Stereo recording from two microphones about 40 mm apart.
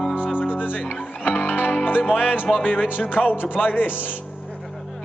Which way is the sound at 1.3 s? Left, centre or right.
Left.